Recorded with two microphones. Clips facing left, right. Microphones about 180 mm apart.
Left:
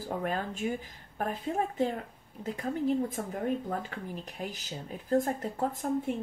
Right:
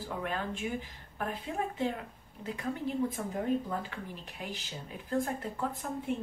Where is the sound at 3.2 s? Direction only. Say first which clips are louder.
Left 1 dB; 50° left (ahead or behind).